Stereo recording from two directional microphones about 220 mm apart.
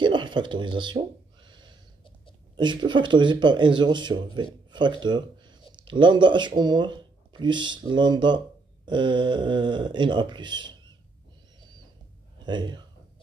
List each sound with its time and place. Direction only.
0.0 s a sound: 20° right (ahead or behind)
2.5 s speech: 20° right (ahead or behind)
12.4 s speech: 20° right (ahead or behind)